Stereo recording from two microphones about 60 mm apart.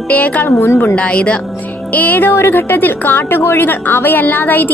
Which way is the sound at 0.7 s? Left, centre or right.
Left.